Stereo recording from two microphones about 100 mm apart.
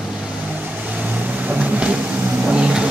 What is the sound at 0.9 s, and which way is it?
Vehicle, 15° right (ahead or behind).